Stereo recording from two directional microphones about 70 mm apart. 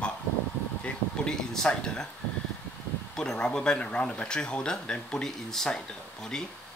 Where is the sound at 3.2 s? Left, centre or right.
Centre.